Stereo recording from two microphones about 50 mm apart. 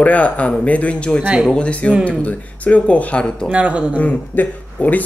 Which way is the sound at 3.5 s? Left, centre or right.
Right.